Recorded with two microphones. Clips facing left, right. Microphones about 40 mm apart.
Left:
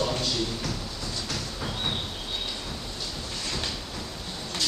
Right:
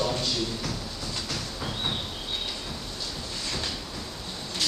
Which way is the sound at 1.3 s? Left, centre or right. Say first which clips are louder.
Even; centre.